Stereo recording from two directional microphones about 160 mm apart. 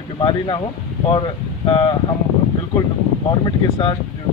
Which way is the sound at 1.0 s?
30° left (ahead or behind).